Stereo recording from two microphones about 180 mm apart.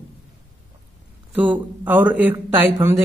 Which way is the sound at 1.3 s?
10° right (ahead or behind).